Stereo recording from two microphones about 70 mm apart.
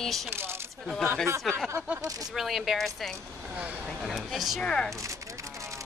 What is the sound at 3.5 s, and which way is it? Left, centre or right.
Vehicle, centre.